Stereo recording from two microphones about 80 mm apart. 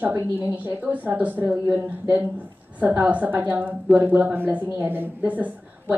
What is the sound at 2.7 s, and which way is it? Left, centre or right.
A woman's voice, right.